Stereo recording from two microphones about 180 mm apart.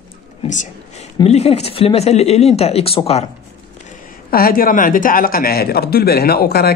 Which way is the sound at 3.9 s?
50° left (ahead or behind).